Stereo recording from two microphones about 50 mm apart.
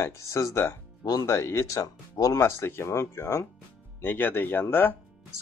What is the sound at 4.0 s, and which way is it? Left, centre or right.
Speech, left.